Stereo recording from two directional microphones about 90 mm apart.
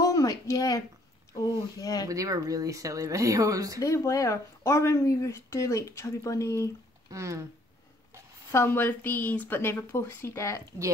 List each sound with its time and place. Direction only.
0.0 s a sound: 40° left (ahead or behind)
1.8 s speech: 45° left (ahead or behind)
2.0 s speech: 40° right (ahead or behind)
3.8 s speech: 35° left (ahead or behind)
7.1 s speech: 35° right (ahead or behind)
8.5 s a woman's voice: 25° left (ahead or behind)